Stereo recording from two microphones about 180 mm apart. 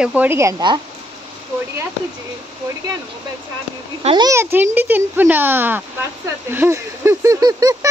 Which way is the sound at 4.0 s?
30° right (ahead or behind).